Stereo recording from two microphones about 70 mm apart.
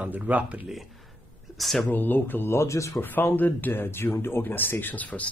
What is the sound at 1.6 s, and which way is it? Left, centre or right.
Speech, centre.